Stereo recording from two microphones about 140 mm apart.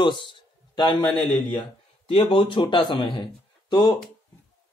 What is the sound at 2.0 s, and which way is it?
Speech, 35° left (ahead or behind).